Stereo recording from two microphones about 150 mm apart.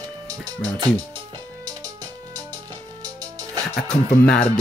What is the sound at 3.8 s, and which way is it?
Speech, 10° left (ahead or behind).